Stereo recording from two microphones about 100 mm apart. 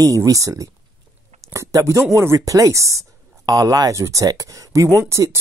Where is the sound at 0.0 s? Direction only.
35° right (ahead or behind).